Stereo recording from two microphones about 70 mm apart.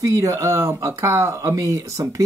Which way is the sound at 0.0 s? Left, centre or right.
Right.